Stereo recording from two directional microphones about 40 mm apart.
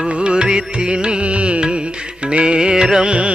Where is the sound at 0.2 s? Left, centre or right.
Right.